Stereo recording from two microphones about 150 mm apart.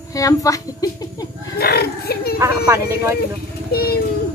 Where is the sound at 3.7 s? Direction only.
90° left.